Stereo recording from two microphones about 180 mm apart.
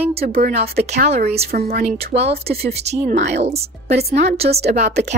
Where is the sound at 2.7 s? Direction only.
35° right (ahead or behind).